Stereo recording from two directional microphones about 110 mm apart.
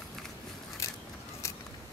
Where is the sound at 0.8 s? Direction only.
30° left (ahead or behind).